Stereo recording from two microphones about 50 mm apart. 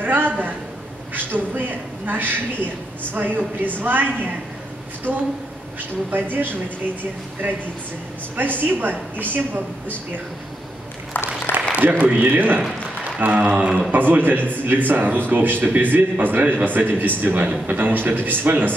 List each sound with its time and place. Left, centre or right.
0.0 s a sound: right
1.1 s a man's voice: right
8.5 s a man's voice: right
11.1 s applause: left
11.7 s a man's voice: right
13.7 s a man's voice: centre
13.9 s a man's voice: right